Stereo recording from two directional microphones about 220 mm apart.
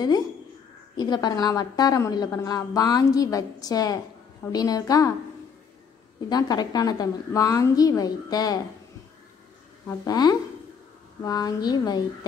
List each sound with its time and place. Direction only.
0.9 s a woman's voice: 20° left (ahead or behind)
6.2 s a woman's voice: 15° left (ahead or behind)
9.8 s a woman's voice: 15° left (ahead or behind)